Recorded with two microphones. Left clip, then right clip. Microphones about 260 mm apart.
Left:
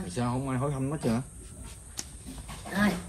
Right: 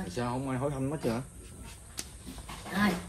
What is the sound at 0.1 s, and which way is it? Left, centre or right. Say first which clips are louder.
Speech: left 2 dB; left.